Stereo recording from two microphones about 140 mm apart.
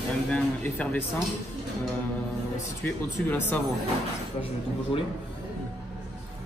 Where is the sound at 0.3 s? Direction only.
10° left (ahead or behind).